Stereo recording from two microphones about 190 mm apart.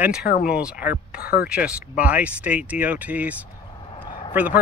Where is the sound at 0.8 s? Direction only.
50° left (ahead or behind).